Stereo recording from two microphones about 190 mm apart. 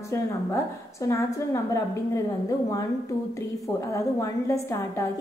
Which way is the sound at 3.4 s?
15° left (ahead or behind).